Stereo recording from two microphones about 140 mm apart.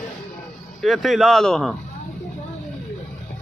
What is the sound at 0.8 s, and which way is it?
Speech, centre (ahead or behind).